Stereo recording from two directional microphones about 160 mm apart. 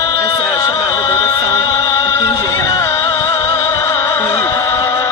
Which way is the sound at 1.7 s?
20° left (ahead or behind).